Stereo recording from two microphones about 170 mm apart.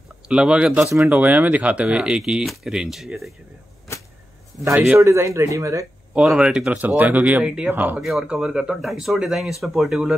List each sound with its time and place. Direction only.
0.3 s speech: 5° right (ahead or behind)
4.9 s speech: 15° right (ahead or behind)
6.1 s speech: 5° right (ahead or behind)